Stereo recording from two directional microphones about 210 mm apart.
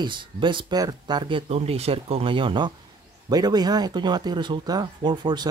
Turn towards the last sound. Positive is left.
turn(degrees=-20)  # may be behind; listen again after turning